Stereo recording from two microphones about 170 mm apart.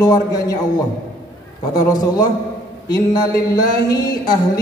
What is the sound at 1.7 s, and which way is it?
Speech, 25° left (ahead or behind).